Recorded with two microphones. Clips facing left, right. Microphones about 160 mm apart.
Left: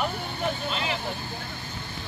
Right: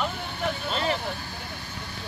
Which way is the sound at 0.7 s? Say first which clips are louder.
Right 3 dB; 35° right (ahead or behind).